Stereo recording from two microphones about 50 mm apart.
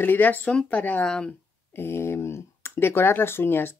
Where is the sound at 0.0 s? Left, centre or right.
Left.